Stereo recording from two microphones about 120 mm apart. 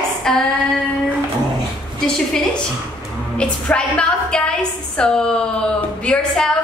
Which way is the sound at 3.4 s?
10° left (ahead or behind).